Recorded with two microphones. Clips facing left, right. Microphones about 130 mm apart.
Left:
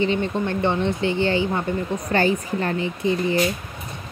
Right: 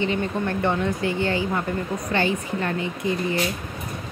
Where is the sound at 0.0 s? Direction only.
25° left (ahead or behind).